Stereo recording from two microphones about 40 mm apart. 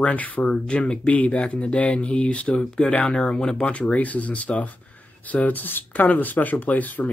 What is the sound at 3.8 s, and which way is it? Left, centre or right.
Speech, left.